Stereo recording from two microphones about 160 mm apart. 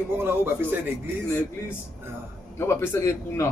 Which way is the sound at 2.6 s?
15° left (ahead or behind).